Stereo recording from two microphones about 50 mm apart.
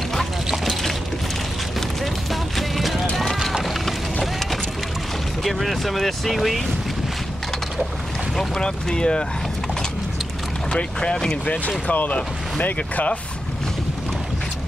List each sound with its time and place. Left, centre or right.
2.5 s music: centre
3.6 s boat: centre
5.4 s speech: centre
8.4 s speech: centre
10.7 s speech: centre
11.9 s speech: left